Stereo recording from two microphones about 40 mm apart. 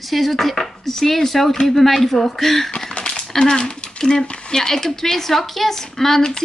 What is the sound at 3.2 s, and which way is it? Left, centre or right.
Speech, left.